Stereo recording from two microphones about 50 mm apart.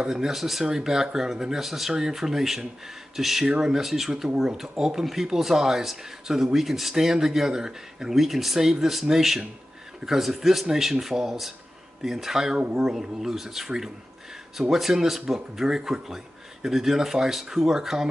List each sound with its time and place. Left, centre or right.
0.0 s speech: centre
12.5 s speech: centre
12.9 s speech: centre